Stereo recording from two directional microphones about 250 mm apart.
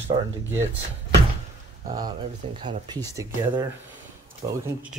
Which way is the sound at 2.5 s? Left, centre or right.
Centre.